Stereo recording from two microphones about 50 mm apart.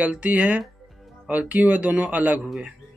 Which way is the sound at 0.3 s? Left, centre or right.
Right.